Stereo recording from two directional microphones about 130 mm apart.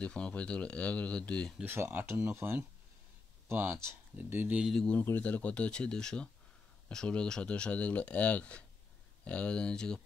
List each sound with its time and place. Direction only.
0.0 s speech: 10° left (ahead or behind)
1.6 s speech: 15° right (ahead or behind)
4.7 s speech: 10° left (ahead or behind)